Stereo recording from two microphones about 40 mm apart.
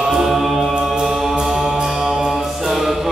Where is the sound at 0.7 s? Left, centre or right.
Centre.